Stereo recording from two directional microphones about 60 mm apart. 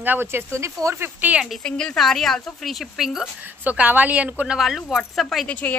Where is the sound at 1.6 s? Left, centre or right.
Centre.